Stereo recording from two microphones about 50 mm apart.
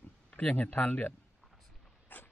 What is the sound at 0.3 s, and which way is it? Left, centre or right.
Speech, left.